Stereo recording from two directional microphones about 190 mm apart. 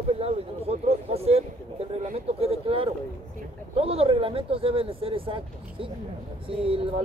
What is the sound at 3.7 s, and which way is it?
Speech, 30° right (ahead or behind).